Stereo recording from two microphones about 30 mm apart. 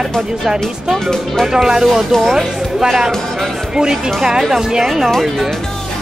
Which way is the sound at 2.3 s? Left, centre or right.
Centre.